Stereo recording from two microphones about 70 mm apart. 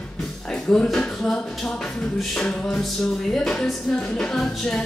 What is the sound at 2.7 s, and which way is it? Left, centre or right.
Music, centre.